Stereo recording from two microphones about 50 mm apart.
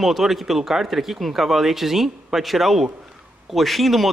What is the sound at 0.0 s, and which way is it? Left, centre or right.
A man's voice, centre.